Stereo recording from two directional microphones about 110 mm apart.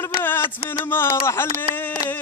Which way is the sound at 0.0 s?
20° left (ahead or behind).